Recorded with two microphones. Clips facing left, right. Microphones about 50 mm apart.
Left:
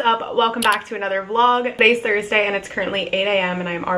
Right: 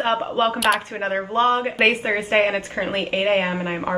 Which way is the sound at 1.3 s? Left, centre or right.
Left.